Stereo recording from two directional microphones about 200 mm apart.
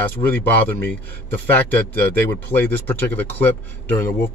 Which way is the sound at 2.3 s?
10° left (ahead or behind).